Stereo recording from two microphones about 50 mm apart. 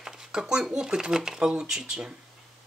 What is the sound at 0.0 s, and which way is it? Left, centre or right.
Speech, centre.